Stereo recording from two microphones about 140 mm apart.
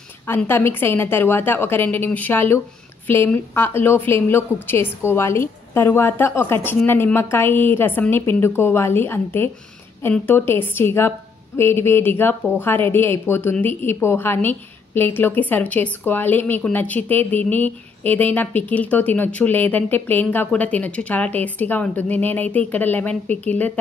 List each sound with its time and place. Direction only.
0.4 s a woman's voice: 15° left (ahead or behind)